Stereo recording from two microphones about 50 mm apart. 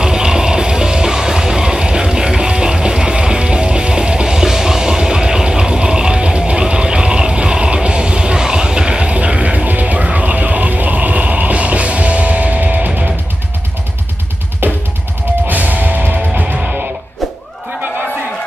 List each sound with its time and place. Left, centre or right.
0.0 s music: centre; by 13.0 s right
14.6 s music: right